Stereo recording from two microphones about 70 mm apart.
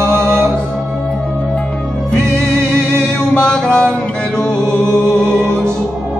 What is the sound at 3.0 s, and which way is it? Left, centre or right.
Music, centre.